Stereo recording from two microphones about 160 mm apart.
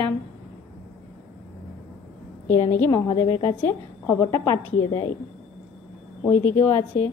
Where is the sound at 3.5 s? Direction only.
15° left (ahead or behind).